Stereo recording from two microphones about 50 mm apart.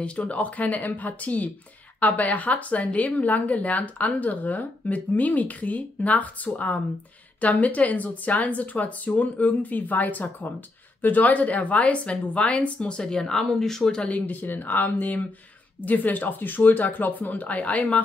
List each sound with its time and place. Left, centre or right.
0.0 s speech: left
7.6 s speech: left; by 13.9 s centre
13.9 s speech: left